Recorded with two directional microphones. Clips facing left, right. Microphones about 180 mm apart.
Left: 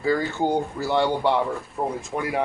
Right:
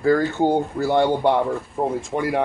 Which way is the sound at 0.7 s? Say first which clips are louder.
Right 4 dB; 55° right (ahead or behind).